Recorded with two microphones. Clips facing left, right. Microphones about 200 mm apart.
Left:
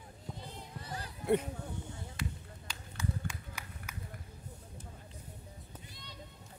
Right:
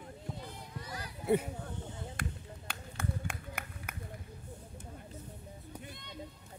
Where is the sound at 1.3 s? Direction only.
5° right (ahead or behind).